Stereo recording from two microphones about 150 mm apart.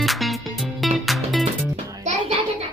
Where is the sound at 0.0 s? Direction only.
Centre (ahead or behind).